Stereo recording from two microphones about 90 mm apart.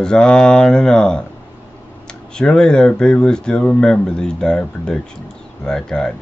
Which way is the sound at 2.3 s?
10° left (ahead or behind).